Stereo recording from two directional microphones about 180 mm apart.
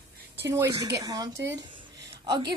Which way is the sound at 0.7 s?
20° right (ahead or behind).